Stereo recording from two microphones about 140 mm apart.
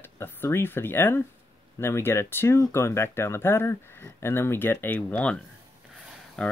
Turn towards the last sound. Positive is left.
turn(degrees=10)  # may be behind; listen again after turning